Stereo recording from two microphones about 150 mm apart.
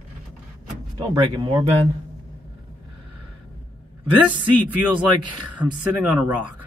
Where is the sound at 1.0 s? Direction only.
30° right (ahead or behind).